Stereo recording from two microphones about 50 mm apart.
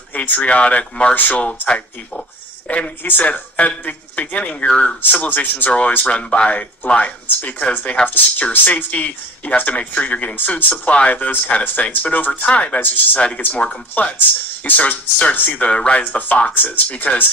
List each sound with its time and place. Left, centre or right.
0.1 s speech: left
3.0 s speech: left
3.3 s speech: left
7.2 s speech: left
10.3 s speech: left